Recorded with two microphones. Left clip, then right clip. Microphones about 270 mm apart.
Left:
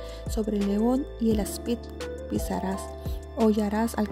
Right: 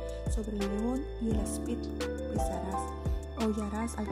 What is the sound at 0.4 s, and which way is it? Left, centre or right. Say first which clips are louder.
Speech: left 9 dB; left.